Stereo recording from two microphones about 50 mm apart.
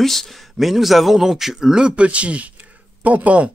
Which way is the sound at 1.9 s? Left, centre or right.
Right.